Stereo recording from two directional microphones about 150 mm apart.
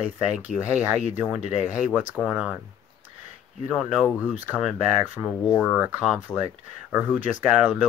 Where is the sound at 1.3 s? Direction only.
50° left (ahead or behind).